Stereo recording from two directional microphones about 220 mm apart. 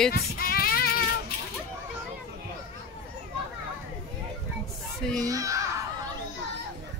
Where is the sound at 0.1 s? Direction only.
45° left (ahead or behind).